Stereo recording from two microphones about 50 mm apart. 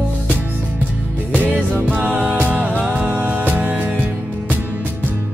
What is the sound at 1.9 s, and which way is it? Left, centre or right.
Music, right.